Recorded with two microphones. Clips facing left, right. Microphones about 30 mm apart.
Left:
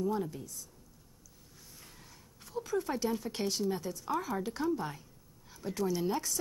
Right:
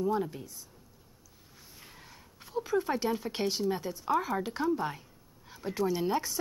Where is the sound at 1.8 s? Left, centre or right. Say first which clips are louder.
Right 5 dB; right.